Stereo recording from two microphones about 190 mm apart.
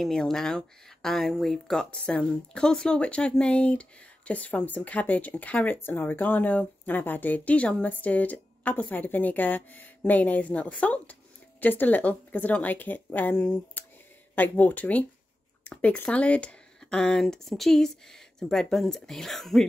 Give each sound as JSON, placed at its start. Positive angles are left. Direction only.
{"t": 0.0, "sound": "speech", "side_deg": 0}